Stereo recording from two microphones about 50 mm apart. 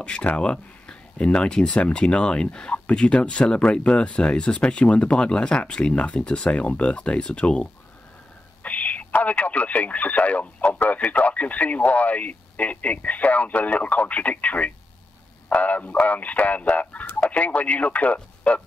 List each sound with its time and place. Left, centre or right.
0.0 s speech: left
8.6 s speech: left